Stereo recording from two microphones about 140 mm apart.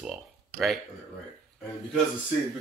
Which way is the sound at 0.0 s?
Centre (ahead or behind).